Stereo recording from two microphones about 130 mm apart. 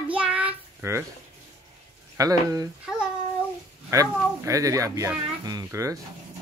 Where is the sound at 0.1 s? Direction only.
10° right (ahead or behind).